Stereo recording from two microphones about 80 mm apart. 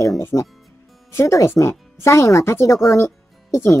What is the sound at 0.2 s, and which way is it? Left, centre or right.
Speech, left.